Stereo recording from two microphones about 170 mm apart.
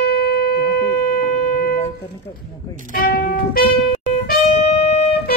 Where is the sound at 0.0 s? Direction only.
65° left (ahead or behind).